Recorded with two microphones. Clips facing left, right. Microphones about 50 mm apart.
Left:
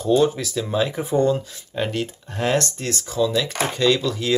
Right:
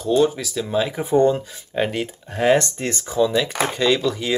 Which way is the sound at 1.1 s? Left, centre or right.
Right.